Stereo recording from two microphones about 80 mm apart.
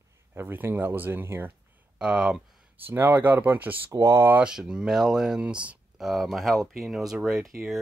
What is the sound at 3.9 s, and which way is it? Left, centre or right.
Speech, right.